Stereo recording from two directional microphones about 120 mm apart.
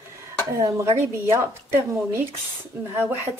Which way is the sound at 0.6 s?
25° right (ahead or behind).